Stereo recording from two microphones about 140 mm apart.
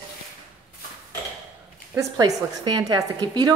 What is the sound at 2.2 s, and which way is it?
A woman's voice, 30° right (ahead or behind).